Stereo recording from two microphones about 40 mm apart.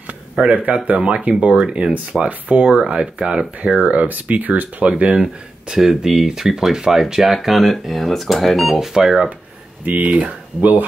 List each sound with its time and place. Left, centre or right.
0.5 s speech: right
0.8 s speech: right
3.8 s speech: right
4.9 s speech: right
5.7 s speech: centre
10.0 s speech: right
10.6 s speech: right